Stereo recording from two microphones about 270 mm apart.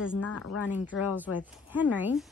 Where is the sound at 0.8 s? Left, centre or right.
Centre.